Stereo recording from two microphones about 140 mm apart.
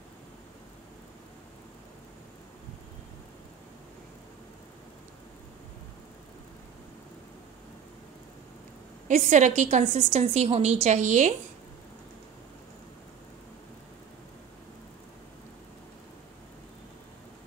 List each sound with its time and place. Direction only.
9.0 s a woman's voice: 60° right (ahead or behind)